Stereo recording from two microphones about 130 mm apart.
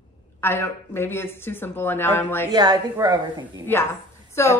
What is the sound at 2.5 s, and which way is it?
Speech, 30° right (ahead or behind).